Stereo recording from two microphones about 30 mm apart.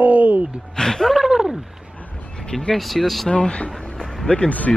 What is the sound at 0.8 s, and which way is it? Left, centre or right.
Speech, centre.